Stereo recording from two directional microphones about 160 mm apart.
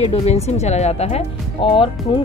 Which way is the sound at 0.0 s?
40° left (ahead or behind).